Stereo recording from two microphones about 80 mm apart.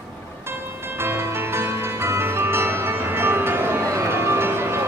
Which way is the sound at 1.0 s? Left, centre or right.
Right.